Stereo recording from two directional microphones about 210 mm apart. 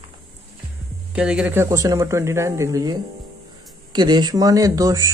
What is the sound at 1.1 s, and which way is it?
Speech, 5° right (ahead or behind).